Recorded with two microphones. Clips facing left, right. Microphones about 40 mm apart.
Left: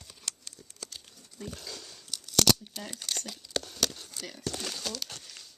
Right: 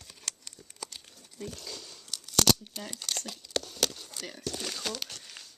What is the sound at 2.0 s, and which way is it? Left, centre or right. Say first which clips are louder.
Tearing: even; centre.